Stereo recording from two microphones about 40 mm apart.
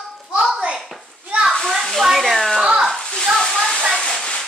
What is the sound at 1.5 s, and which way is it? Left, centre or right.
Children playing, centre.